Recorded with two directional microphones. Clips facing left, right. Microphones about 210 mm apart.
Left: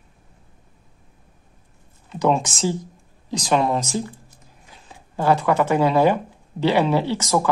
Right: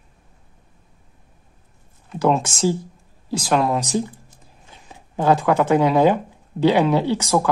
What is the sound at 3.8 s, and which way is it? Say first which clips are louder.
Speech: right 3 dB; 15° right (ahead or behind).